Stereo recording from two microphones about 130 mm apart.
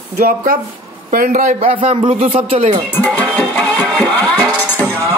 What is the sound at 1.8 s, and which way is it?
Speech, 50° right (ahead or behind).